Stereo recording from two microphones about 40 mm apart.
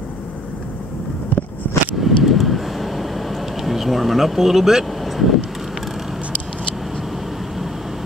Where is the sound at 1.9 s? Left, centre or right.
Centre.